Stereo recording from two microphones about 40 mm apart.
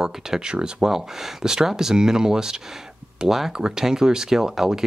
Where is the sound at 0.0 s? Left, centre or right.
Centre.